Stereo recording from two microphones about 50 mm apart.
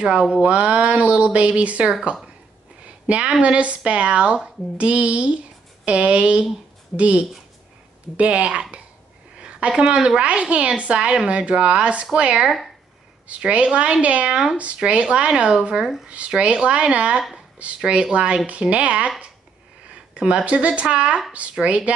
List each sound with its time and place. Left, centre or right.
0.4 s speech: right
9.4 s a sound: right
9.8 s speech: centre
12.4 s speech: centre
13.3 s speech: right